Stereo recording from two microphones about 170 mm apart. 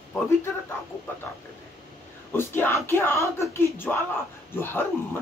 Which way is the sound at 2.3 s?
15° left (ahead or behind).